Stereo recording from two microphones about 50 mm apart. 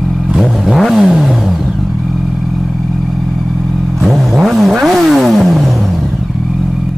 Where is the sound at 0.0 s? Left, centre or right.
Centre.